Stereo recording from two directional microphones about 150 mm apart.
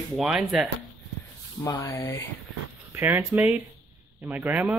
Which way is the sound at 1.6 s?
20° left (ahead or behind).